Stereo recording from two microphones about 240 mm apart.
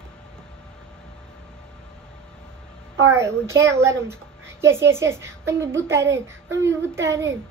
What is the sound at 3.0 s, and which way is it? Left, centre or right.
Speech, centre.